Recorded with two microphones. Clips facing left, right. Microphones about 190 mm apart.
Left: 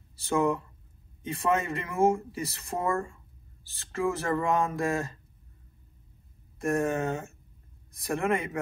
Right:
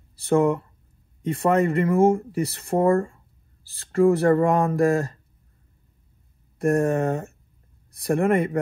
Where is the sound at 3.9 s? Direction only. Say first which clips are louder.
Right 11 dB; 55° right (ahead or behind).